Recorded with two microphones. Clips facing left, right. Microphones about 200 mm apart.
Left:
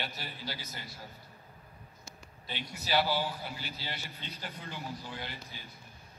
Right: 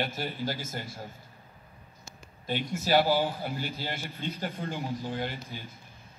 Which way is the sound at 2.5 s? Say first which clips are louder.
Right 8 dB; 50° right (ahead or behind).